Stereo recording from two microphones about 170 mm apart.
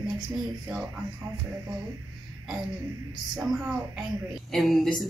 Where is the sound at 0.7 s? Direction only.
15° right (ahead or behind).